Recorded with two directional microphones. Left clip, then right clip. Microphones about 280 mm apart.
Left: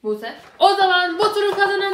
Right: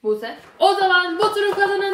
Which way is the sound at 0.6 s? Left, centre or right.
Centre.